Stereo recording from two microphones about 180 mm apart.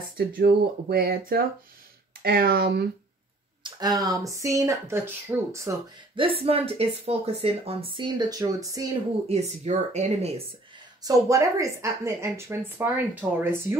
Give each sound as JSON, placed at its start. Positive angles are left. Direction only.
{"t": 0.2, "sound": "speech", "side_deg": -55}
{"t": 3.8, "sound": "speech", "side_deg": -20}
{"t": 6.1, "sound": "speech", "side_deg": -30}
{"t": 9.3, "sound": "speech", "side_deg": -40}
{"t": 11.0, "sound": "speech", "side_deg": -20}